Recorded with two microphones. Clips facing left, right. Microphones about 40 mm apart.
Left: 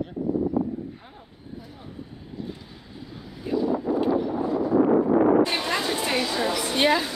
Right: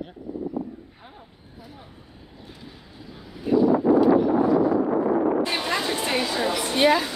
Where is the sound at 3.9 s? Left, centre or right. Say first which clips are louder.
Right 7 dB; right.